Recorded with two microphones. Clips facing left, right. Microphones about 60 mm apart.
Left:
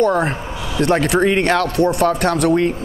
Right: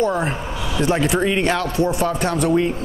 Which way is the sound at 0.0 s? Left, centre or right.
Left.